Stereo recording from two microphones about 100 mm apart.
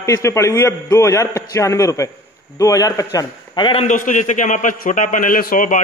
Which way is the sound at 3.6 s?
55° left (ahead or behind).